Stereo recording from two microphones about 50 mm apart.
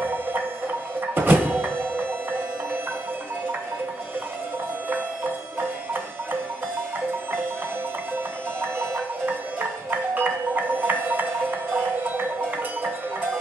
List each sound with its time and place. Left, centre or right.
0.0 s music: right
4.8 s music: right
8.5 s music: right
9.2 s music: right